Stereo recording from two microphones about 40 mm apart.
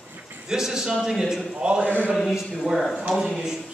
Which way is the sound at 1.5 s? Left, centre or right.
Right.